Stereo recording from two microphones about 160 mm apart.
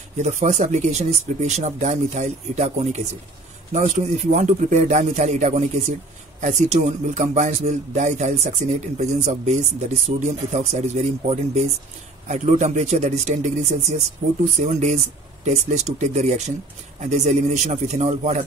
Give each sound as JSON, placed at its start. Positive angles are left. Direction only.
{"t": 0.2, "sound": "speech", "side_deg": -45}